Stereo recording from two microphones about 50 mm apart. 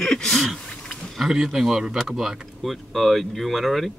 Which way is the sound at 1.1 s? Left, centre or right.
Centre.